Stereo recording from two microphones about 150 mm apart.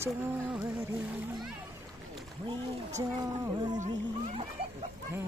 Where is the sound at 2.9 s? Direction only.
20° right (ahead or behind).